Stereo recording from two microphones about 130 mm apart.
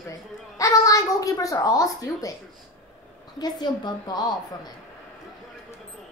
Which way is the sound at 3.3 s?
30° left (ahead or behind).